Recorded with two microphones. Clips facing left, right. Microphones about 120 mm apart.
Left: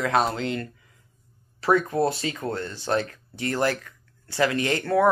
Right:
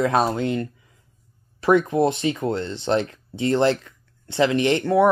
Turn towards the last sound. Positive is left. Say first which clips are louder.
# right 4 dB
turn(degrees=-20)  # may be behind; listen again after turning